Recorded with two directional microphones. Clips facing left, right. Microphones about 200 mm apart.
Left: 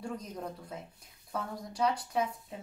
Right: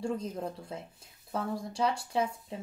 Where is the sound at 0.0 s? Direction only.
25° right (ahead or behind).